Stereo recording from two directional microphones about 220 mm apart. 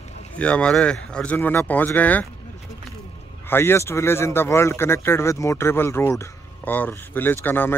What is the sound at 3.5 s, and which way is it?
Speech, 10° left (ahead or behind).